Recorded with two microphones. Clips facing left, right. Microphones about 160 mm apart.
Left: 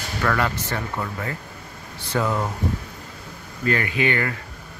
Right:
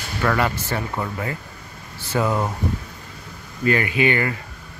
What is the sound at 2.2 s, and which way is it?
Speech, 15° right (ahead or behind).